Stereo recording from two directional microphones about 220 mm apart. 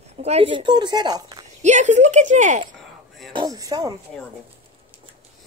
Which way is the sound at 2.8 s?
Centre (ahead or behind).